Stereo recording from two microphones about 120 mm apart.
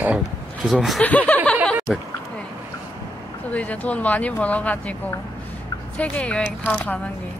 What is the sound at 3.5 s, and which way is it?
Speech, 10° left (ahead or behind).